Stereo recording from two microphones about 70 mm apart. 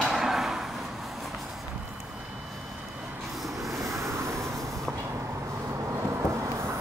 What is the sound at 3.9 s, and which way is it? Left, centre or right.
Vehicle, right.